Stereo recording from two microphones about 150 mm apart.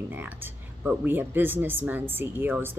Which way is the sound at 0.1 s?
10° right (ahead or behind).